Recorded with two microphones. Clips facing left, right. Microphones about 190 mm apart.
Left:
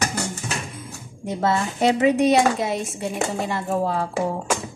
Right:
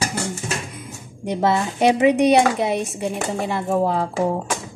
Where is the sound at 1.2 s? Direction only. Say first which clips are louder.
Right 2 dB; 15° right (ahead or behind).